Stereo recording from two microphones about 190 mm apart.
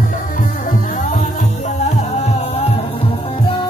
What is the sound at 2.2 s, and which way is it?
Music, 30° left (ahead or behind).